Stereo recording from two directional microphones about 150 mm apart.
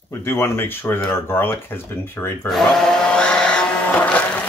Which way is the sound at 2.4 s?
5° left (ahead or behind).